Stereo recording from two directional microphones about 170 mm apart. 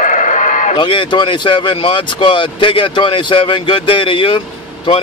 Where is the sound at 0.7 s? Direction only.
30° left (ahead or behind).